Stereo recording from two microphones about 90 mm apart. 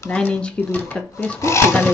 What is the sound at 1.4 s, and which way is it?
Speech, 30° left (ahead or behind).